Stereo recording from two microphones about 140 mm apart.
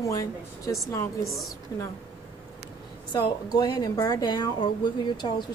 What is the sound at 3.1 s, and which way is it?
Speech, 30° left (ahead or behind).